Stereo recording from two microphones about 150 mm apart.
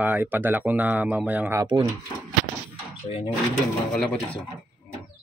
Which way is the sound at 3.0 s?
40° left (ahead or behind).